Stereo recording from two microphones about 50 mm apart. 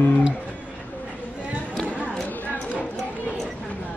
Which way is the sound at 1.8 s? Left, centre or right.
Left.